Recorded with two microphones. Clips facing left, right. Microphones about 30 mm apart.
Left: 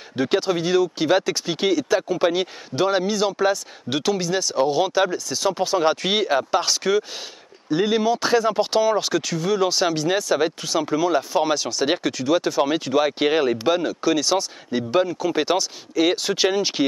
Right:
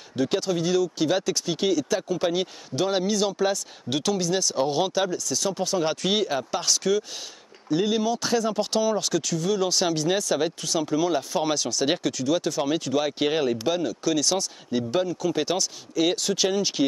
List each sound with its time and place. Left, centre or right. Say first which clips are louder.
0.2 s speech: left 3 dB; left
4.6 s speech: left 4 dB; centre
4.9 s speech: left 4 dB; left